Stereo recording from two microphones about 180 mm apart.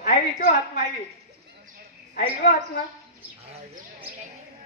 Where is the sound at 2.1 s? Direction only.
45° left (ahead or behind).